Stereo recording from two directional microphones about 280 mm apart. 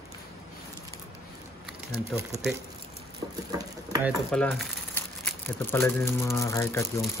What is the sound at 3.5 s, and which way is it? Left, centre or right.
Speech, centre.